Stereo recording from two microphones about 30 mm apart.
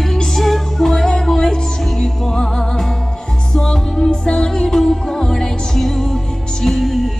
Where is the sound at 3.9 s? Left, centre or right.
Centre.